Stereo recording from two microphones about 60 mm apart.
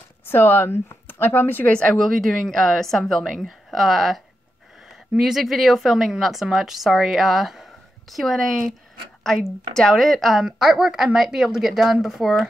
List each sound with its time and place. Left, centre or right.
0.3 s speech: left
1.7 s a woman's voice: centre
2.2 s a woman's voice: centre
10.4 s speech: centre